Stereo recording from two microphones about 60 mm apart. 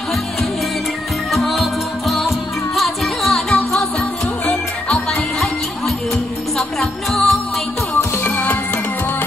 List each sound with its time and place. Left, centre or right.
1.3 s music: centre
5.1 s music: centre
8.2 s music: left